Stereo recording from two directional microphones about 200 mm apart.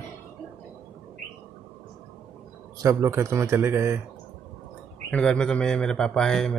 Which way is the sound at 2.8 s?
15° right (ahead or behind).